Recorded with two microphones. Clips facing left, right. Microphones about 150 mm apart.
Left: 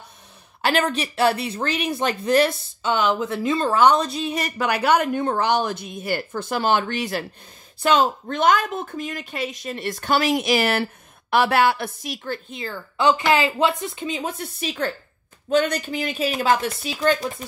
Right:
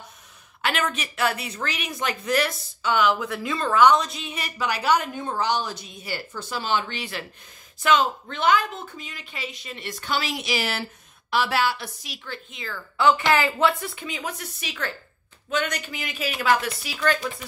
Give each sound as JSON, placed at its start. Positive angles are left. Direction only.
{"t": 0.6, "sound": "a woman's voice", "side_deg": 35}
{"t": 12.4, "sound": "a woman's voice", "side_deg": 35}